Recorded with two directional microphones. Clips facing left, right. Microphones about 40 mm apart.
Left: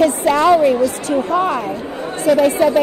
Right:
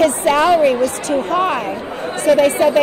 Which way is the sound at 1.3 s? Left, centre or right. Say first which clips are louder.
Even; right.